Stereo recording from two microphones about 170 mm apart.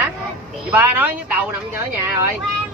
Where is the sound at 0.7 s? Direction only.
10° right (ahead or behind).